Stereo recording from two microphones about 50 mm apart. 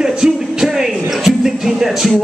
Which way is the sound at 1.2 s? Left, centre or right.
Centre.